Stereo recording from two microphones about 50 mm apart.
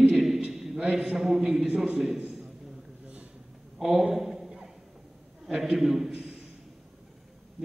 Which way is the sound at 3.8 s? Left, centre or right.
Centre.